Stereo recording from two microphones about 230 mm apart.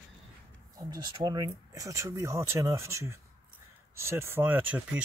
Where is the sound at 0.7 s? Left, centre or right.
Centre.